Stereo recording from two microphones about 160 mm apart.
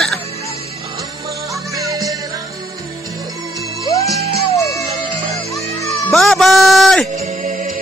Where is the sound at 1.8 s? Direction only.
20° right (ahead or behind).